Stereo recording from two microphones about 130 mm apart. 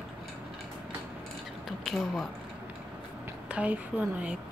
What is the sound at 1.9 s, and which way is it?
Speech, centre (ahead or behind).